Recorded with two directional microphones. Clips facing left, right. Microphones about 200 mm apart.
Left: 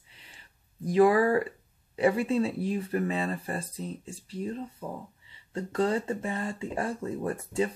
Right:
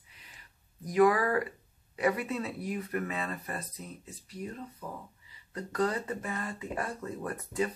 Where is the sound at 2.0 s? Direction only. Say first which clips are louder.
Left 6 dB; 30° left (ahead or behind).